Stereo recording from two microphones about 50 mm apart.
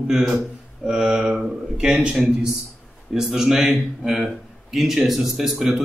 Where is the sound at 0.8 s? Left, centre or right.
Centre.